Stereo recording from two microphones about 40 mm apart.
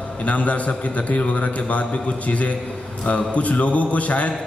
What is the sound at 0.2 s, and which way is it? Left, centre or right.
A man's voice, left.